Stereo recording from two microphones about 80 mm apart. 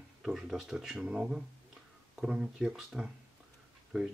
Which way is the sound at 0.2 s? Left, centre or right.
Centre.